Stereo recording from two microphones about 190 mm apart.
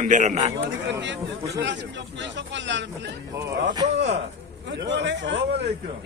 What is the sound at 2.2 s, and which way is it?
Speech, 70° right (ahead or behind).